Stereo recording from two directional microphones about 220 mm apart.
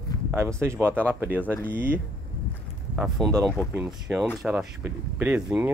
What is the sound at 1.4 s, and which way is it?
Speech, 5° left (ahead or behind).